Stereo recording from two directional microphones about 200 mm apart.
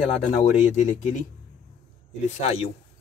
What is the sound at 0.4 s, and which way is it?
Speech, 35° left (ahead or behind).